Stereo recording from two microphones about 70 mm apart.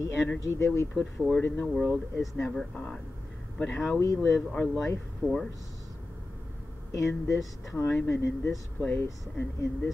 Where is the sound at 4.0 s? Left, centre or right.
Left.